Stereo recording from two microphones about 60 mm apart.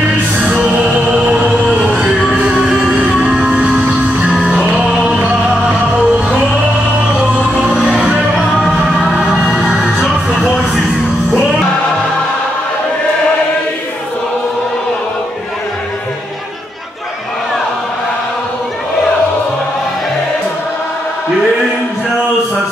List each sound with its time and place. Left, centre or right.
1.1 s music: centre
5.7 s music: centre
7.7 s music: centre
8.5 s music: centre